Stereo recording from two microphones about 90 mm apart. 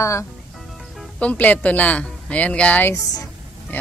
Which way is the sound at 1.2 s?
15° left (ahead or behind).